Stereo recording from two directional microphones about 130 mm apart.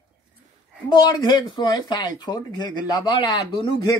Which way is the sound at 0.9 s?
35° left (ahead or behind).